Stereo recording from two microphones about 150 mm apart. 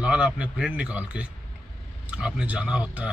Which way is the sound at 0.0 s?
10° right (ahead or behind).